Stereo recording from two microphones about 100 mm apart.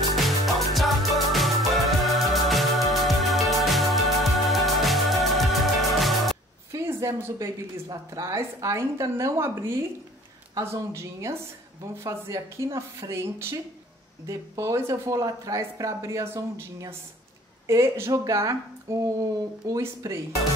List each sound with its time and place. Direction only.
0.1 s music: centre (ahead or behind)
6.7 s a woman's voice: 30° right (ahead or behind)
17.6 s a woman's voice: 30° right (ahead or behind)